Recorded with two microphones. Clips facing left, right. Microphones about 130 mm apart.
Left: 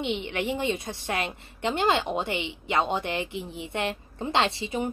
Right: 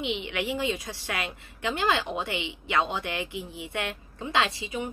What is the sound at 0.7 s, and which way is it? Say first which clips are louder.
A woman's voice: left 3 dB; 25° left (ahead or behind).